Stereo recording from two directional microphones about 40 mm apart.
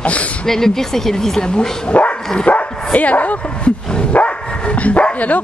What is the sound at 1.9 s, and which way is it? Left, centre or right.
Speech, left.